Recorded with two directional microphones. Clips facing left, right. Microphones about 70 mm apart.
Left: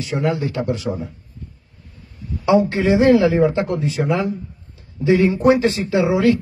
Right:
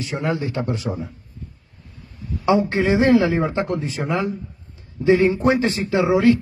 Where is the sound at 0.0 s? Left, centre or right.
Right.